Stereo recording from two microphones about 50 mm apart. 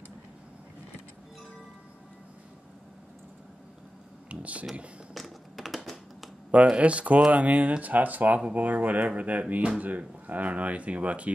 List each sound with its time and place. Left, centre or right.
4.3 s a sound: right
5.1 s computer keyboard: centre
6.5 s speech: right